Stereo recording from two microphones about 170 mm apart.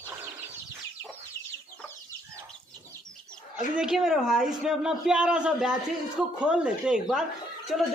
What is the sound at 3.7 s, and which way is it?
Speech, 5° right (ahead or behind).